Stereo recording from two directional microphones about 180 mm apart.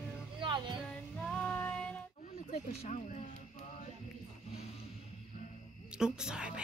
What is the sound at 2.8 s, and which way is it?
Speech, 40° left (ahead or behind).